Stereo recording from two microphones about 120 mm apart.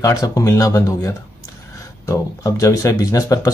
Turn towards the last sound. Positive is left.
turn(degrees=30)  # may be behind; listen again after turning